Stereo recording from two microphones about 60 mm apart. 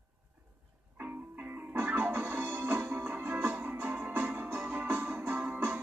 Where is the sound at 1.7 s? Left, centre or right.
Right.